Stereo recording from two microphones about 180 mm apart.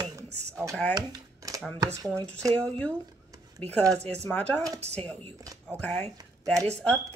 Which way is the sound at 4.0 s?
35° right (ahead or behind).